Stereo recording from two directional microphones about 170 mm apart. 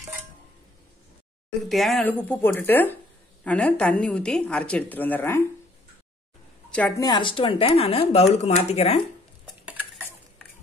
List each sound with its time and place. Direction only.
1.7 s a woman's voice: centre (ahead or behind)
7.0 s speech: 25° left (ahead or behind)